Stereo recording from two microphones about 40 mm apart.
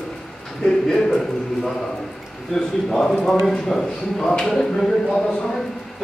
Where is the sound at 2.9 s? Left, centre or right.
Centre.